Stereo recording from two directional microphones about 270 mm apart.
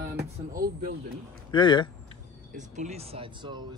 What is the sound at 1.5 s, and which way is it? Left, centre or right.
Speech, centre.